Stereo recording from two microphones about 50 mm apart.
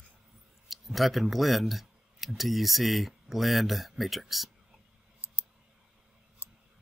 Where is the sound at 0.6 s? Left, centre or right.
Centre.